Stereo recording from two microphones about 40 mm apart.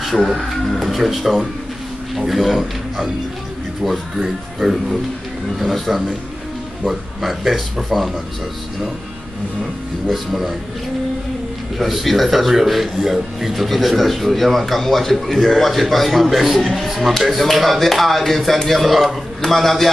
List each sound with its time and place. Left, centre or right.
0.1 s speech: centre
4.2 s speech: centre
10.0 s speech: centre
11.8 s speech: centre